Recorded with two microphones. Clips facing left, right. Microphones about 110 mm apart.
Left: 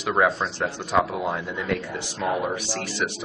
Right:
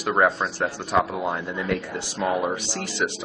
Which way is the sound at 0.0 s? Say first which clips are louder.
Right 1 dB; 10° right (ahead or behind).